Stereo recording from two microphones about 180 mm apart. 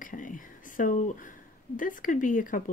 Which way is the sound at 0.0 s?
50° left (ahead or behind).